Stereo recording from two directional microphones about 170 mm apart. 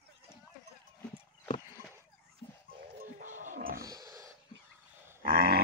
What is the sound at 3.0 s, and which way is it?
Music, 50° right (ahead or behind).